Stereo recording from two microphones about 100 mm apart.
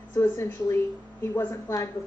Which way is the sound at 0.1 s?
25° left (ahead or behind).